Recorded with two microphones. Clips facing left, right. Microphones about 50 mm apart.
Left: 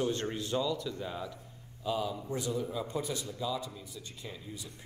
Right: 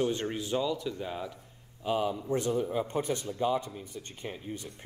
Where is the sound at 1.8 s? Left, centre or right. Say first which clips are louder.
Right 4 dB; right.